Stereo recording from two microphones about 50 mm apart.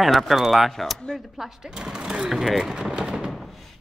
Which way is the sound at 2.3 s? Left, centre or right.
Centre.